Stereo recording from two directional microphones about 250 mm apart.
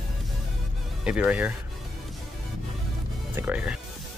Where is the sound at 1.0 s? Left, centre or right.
Centre.